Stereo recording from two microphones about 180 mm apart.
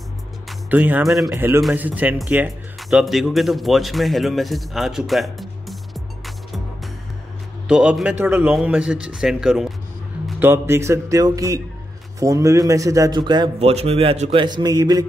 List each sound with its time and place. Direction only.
0.5 s speech: 10° right (ahead or behind)
1.3 s a man's voice: 15° right (ahead or behind); by 14.4 s 35° right (ahead or behind)
14.4 s a man's voice: 25° right (ahead or behind)